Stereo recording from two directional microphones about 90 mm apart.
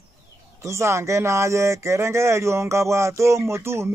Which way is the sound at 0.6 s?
35° right (ahead or behind).